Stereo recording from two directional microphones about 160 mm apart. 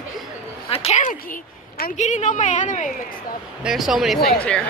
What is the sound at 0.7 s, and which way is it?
A woman's voice, 40° left (ahead or behind).